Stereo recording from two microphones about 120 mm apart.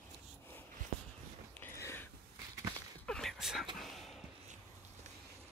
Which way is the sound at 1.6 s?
20° left (ahead or behind).